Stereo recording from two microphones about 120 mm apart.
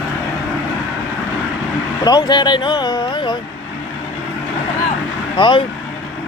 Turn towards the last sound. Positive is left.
turn(degrees=40)  # may be behind; listen again after turning